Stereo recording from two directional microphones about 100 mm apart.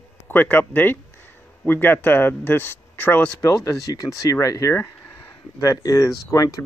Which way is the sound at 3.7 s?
35° left (ahead or behind).